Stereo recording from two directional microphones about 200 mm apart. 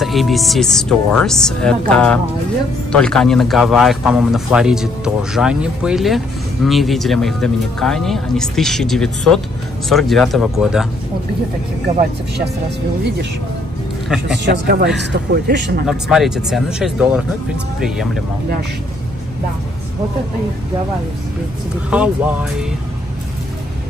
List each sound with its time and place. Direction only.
0.0 s a man's voice: centre (ahead or behind)
14.4 s speech: 60° right (ahead or behind)
15.9 s a man's voice: centre (ahead or behind)
21.9 s a man's voice: 5° right (ahead or behind)